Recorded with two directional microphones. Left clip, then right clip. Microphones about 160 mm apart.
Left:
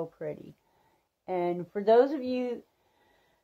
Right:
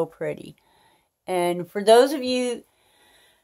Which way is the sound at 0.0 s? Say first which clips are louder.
Right 9 dB; 40° right (ahead or behind).